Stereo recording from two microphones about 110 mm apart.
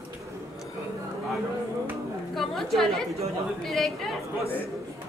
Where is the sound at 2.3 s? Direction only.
Centre (ahead or behind).